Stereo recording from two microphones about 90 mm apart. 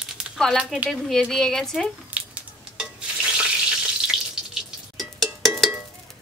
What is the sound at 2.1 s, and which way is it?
Water, 10° right (ahead or behind).